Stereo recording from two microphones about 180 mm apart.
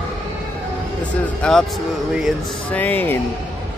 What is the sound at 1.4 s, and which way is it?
Mantra, 5° left (ahead or behind).